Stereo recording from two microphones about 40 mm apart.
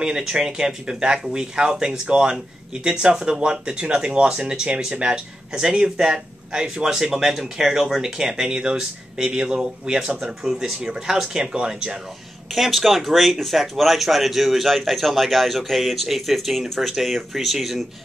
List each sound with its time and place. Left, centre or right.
0.0 s speech: centre
12.5 s speech: centre